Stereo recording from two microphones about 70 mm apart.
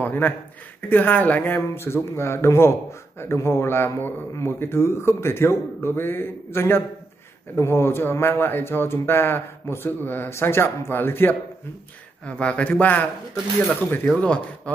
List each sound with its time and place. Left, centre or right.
0.0 s a sound: left
0.8 s speech: left
12.3 s speech: centre